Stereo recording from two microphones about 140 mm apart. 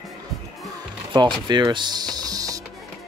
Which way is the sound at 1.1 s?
30° right (ahead or behind).